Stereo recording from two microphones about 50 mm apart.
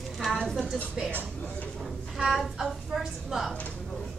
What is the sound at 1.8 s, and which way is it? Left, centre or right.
A woman's voice, centre.